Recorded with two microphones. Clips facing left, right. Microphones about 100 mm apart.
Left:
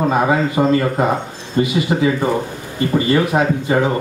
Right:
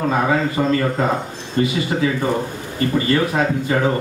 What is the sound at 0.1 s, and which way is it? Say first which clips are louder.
Speech: left 2 dB; 20° left (ahead or behind).